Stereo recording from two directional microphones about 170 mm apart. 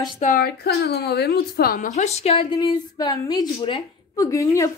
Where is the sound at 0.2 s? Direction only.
55° left (ahead or behind); by 2.4 s 40° left (ahead or behind).